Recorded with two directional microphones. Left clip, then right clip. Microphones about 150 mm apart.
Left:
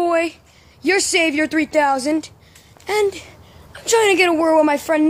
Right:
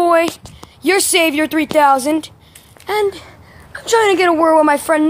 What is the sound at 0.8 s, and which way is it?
A woman's voice, 5° left (ahead or behind).